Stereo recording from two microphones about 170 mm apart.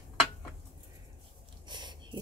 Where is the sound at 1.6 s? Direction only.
25° right (ahead or behind).